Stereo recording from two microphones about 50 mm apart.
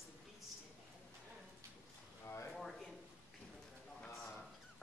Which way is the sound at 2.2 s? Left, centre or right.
Left.